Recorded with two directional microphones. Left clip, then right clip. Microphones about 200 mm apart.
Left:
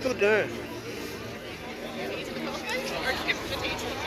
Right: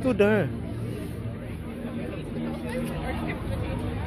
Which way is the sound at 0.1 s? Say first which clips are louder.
Right 2 dB; 20° right (ahead or behind).